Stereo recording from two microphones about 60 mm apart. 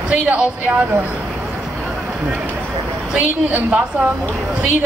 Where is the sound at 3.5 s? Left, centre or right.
Right.